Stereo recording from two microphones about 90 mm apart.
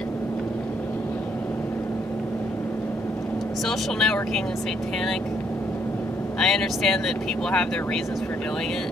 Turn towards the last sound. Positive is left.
turn(degrees=10)  # may be behind; listen again after turning